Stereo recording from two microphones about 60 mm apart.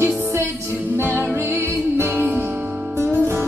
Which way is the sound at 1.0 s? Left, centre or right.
Right.